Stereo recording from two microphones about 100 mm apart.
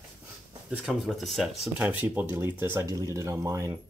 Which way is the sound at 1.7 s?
20° right (ahead or behind).